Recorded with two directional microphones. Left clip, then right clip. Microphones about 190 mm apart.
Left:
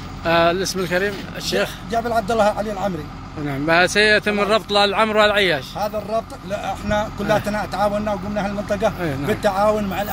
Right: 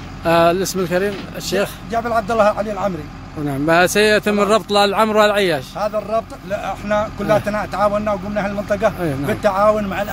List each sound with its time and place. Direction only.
0.2 s a man's voice: 30° right (ahead or behind)
1.9 s speech: 5° left (ahead or behind)
3.4 s a man's voice: 30° right (ahead or behind)
5.8 s speech: centre (ahead or behind)